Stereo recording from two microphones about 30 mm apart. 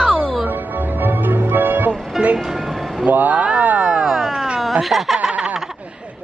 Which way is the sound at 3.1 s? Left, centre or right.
Right.